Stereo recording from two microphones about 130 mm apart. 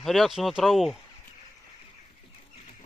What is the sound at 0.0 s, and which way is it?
Speech, centre (ahead or behind).